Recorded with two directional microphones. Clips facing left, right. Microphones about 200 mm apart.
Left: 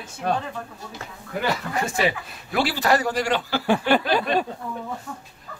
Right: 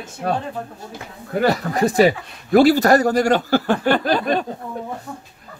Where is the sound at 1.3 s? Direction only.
35° right (ahead or behind).